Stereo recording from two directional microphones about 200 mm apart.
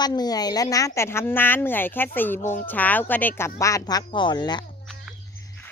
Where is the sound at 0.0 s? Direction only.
20° left (ahead or behind).